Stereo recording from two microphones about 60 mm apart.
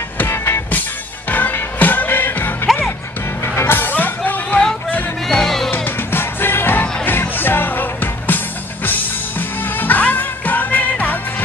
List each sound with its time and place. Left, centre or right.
1.3 s music: left
5.3 s music: centre
5.7 s music: left